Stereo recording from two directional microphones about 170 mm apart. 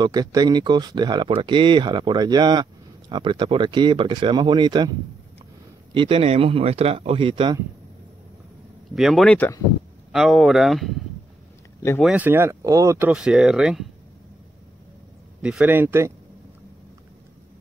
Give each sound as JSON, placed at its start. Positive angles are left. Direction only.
{"t": 0.0, "sound": "speech", "side_deg": -25}
{"t": 5.9, "sound": "speech", "side_deg": -30}
{"t": 8.9, "sound": "speech", "side_deg": 0}
{"t": 12.0, "sound": "speech", "side_deg": -5}
{"t": 13.1, "sound": "speech", "side_deg": -5}
{"t": 15.4, "sound": "speech", "side_deg": -10}